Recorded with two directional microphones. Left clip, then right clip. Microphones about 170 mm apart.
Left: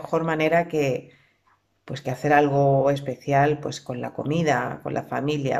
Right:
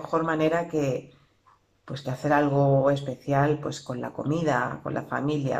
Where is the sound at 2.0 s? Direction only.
40° left (ahead or behind).